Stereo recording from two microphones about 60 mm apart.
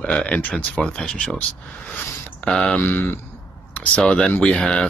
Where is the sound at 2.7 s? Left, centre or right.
Left.